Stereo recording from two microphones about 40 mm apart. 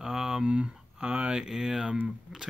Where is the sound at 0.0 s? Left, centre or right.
Centre.